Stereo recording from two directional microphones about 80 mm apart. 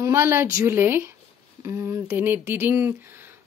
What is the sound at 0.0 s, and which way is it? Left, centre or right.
A woman's voice, right.